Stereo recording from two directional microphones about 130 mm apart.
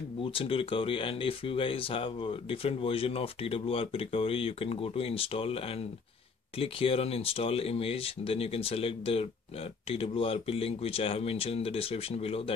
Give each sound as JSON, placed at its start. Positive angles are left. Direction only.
{"t": 0.2, "sound": "speech", "side_deg": 45}
{"t": 6.6, "sound": "speech", "side_deg": 45}